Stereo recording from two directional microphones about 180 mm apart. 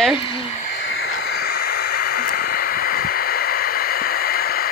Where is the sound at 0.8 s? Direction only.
90° left; by 4.7 s 55° left (ahead or behind).